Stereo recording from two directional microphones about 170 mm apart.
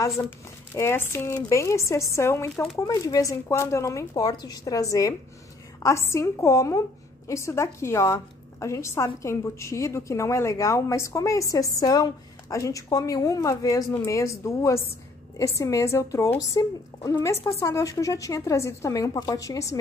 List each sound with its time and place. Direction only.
0.7 s a woman's voice: 15° left (ahead or behind)